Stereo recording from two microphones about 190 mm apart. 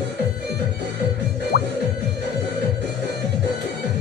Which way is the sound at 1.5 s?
60° left (ahead or behind).